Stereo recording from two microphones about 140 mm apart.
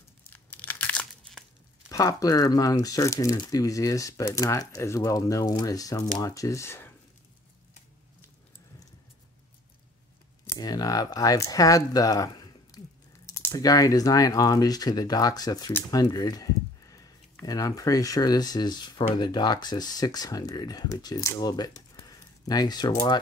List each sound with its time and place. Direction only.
0.3 s crumpling: 10° left (ahead or behind)
1.9 s speech: 25° left (ahead or behind)
10.4 s speech: 25° left (ahead or behind)